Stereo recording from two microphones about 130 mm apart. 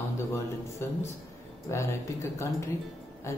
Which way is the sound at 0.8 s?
20° left (ahead or behind).